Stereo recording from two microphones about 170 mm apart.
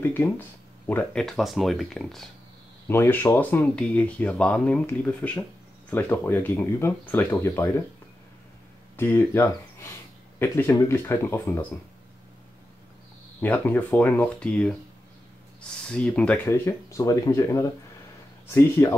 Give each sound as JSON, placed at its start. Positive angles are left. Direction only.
{"t": 0.0, "sound": "speech", "side_deg": 10}
{"t": 2.9, "sound": "speech", "side_deg": 15}
{"t": 8.9, "sound": "speech", "side_deg": 15}
{"t": 13.4, "sound": "speech", "side_deg": 10}
{"t": 15.9, "sound": "speech", "side_deg": 5}